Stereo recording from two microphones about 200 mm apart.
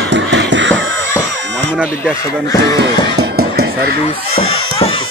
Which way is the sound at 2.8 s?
50° right (ahead or behind).